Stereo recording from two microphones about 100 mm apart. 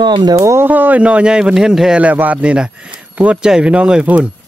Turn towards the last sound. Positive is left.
turn(degrees=-15)  # may be behind; listen again after turning